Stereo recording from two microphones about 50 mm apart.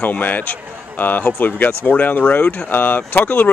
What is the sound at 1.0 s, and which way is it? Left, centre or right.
Speech, left.